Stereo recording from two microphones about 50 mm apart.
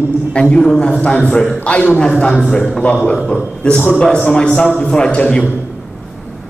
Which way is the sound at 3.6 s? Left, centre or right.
Left.